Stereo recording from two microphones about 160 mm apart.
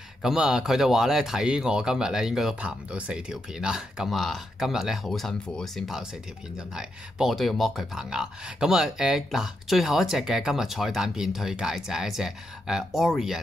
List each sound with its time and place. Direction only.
0.2 s speech: 5° right (ahead or behind)